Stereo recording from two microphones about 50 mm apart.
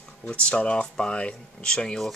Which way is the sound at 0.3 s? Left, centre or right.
Left.